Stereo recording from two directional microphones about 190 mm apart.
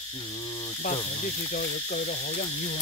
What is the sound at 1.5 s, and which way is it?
Cricket, 45° left (ahead or behind).